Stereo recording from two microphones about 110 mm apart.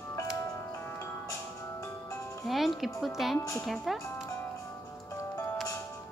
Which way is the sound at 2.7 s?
Centre (ahead or behind).